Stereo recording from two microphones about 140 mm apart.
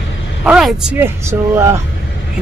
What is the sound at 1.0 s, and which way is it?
Speech, 20° right (ahead or behind).